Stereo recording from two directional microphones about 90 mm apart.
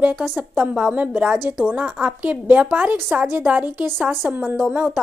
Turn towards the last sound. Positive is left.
turn(degrees=-15)  # may be behind; listen again after turning